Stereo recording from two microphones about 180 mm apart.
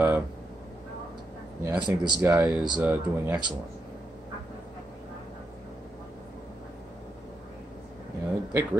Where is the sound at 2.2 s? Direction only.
10° right (ahead or behind).